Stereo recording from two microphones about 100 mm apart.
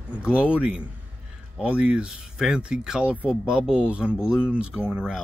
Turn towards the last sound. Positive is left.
turn(degrees=-10)  # may be behind; listen again after turning